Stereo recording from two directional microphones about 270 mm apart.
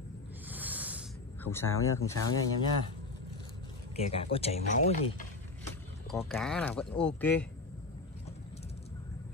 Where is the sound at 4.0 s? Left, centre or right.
Left.